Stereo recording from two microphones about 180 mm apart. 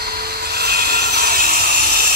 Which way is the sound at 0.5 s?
65° right (ahead or behind).